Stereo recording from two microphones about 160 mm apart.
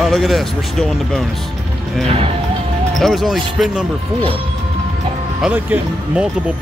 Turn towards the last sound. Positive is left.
turn(degrees=-10)  # may be behind; listen again after turning